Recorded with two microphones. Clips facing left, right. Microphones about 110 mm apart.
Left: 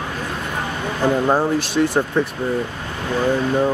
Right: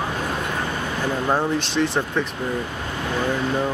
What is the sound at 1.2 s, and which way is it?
Speech, 10° left (ahead or behind).